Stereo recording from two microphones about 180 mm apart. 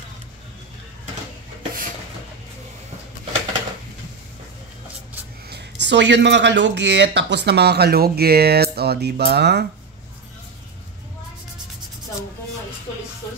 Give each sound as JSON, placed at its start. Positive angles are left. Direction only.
{"t": 5.5, "sound": "speech", "side_deg": -75}